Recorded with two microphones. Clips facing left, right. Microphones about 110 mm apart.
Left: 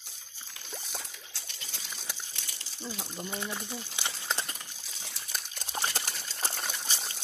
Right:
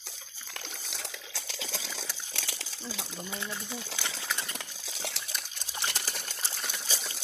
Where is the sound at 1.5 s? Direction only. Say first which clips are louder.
Right 11 dB; 90° right.